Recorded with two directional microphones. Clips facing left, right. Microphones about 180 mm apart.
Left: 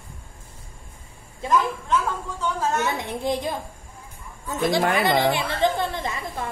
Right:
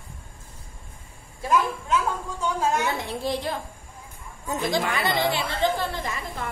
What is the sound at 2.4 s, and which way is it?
Speech, 10° right (ahead or behind).